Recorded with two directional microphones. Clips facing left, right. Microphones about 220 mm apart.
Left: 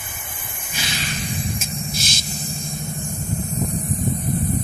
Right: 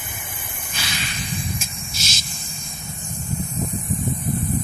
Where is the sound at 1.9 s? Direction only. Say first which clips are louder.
Left 5 dB; 55° left (ahead or behind).